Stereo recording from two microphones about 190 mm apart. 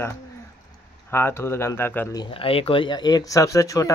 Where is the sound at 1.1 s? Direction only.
15° left (ahead or behind).